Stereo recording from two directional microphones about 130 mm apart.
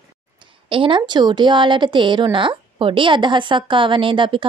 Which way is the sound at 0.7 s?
40° right (ahead or behind).